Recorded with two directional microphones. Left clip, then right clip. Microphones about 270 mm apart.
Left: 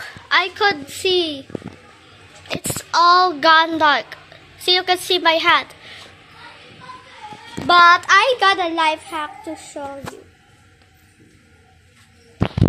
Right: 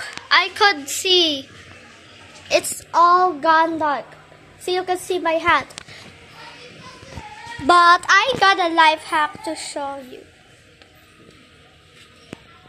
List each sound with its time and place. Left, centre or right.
0.0 s a woman's voice: centre
2.4 s a child's voice: centre
7.6 s child singing: right
8.3 s a woman's voice: centre